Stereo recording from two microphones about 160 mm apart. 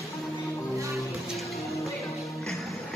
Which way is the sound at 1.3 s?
Centre (ahead or behind).